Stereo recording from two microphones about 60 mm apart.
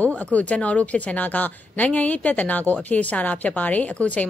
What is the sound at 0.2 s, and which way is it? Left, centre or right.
A woman's voice, left.